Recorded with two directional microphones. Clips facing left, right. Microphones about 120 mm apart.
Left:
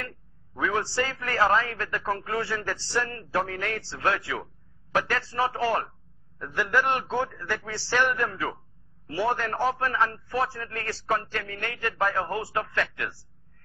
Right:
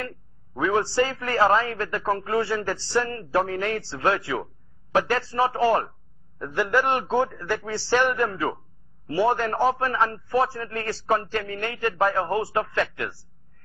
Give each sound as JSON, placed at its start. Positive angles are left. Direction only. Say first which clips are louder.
{"t": 0.6, "sound": "a man's voice", "louder": "right 5 dB", "side_deg": -25}